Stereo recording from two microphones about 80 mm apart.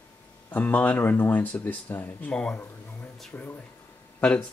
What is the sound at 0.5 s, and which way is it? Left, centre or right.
Speech, centre.